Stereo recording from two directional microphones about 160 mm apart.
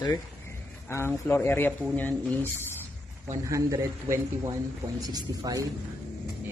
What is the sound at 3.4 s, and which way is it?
A man's voice, 20° right (ahead or behind).